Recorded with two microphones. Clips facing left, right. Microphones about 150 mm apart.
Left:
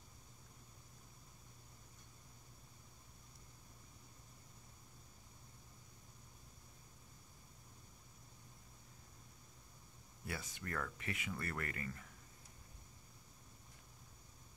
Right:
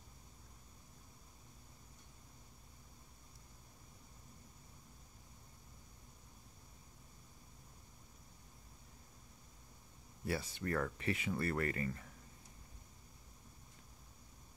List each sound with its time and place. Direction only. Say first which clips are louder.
10.2 s speech: right 8 dB; 30° right (ahead or behind)